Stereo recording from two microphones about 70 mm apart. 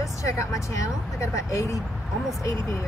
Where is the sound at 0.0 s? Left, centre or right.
Left.